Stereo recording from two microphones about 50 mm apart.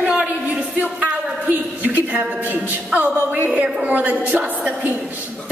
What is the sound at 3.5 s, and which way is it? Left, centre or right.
A woman's voice, right.